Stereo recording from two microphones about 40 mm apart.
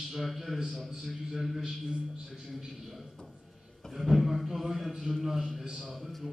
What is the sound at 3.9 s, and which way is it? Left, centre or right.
A man's voice, centre.